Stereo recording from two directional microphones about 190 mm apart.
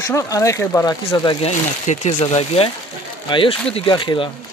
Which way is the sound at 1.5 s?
35° left (ahead or behind).